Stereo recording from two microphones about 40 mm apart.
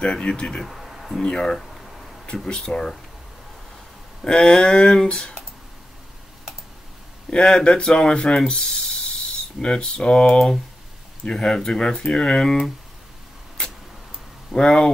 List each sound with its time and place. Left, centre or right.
0.0 s speech: left
0.7 s a sound: centre
1.2 s speech: centre
1.6 s a sound: centre
2.3 s speech: centre
4.2 s speech: centre
7.2 s speech: centre
14.5 s speech: left